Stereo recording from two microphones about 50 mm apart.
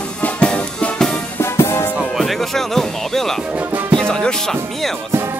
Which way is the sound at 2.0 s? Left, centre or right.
Centre.